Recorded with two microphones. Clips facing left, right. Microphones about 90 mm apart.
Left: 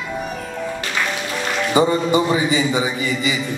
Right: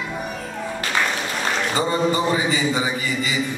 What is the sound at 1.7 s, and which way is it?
A man's voice, 15° left (ahead or behind).